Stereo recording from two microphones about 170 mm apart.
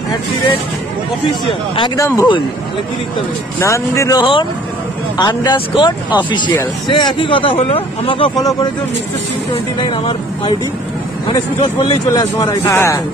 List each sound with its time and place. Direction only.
2.0 s speech: 20° left (ahead or behind)
3.5 s speech: 15° left (ahead or behind); by 8.3 s 30° left (ahead or behind)
9.8 s speech: 25° left (ahead or behind)